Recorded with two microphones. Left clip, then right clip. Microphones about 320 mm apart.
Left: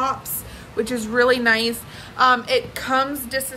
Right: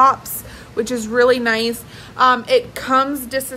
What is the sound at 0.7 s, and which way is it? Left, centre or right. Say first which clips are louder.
A woman's voice: right 3 dB; centre.